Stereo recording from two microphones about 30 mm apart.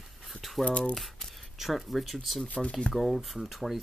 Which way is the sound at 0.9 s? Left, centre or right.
Centre.